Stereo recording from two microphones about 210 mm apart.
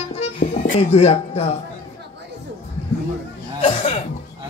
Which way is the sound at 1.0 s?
30° left (ahead or behind).